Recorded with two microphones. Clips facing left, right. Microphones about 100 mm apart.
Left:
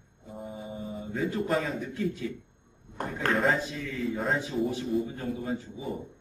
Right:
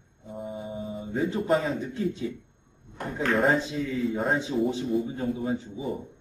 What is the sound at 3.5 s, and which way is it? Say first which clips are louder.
Speech: right 5 dB; 20° right (ahead or behind).